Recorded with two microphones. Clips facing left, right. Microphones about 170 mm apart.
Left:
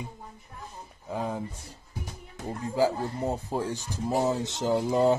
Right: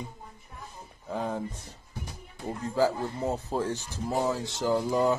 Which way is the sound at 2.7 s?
15° left (ahead or behind).